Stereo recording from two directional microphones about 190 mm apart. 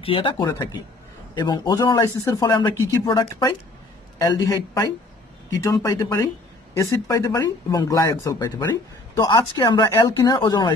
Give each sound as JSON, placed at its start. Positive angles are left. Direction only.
{"t": 0.0, "sound": "a man's voice", "side_deg": 25}